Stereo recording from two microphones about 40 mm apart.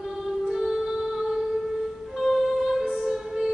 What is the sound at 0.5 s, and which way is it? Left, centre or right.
Music, centre.